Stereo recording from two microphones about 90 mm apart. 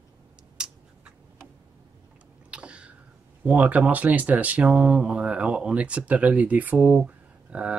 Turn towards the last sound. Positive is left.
turn(degrees=-15)  # may be behind; listen again after turning